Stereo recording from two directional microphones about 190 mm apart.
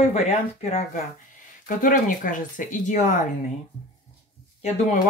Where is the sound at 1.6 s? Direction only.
45° left (ahead or behind).